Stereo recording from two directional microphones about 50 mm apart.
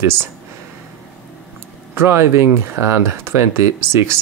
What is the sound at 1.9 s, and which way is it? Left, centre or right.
Speech, right.